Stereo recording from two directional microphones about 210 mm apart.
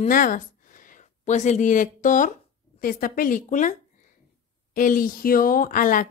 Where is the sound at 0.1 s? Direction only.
40° left (ahead or behind).